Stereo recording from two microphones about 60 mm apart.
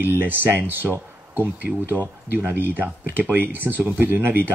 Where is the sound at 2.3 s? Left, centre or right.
Right.